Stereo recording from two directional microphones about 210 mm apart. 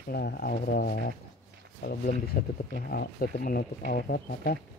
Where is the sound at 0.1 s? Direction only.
50° left (ahead or behind).